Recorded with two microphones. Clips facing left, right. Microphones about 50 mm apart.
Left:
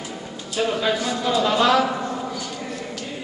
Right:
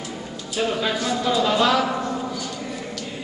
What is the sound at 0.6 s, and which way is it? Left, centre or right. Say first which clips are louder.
Speech: left 1 dB; centre.